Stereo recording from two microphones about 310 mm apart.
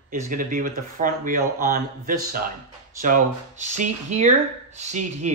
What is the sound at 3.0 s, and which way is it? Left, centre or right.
Speech, right.